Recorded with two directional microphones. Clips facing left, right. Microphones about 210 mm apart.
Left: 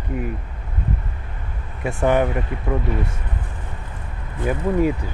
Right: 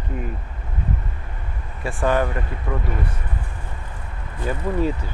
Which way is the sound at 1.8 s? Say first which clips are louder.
Left 3 dB; 20° left (ahead or behind).